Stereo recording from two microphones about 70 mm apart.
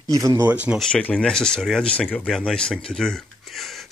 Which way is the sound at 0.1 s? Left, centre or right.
Right.